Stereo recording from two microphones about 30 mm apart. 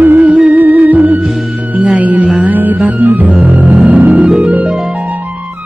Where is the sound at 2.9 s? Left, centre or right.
Right.